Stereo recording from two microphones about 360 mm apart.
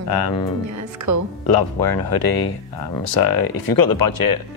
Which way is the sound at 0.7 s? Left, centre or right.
Right.